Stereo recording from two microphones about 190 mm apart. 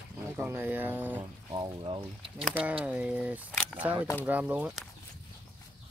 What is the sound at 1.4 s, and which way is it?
Speech, 20° right (ahead or behind).